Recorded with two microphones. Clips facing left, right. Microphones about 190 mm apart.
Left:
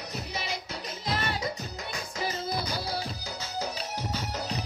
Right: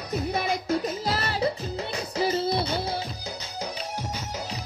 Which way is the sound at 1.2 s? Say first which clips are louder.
Right 6 dB; 30° right (ahead or behind).